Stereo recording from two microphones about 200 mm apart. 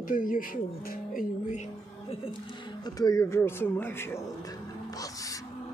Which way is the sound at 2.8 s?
20° left (ahead or behind).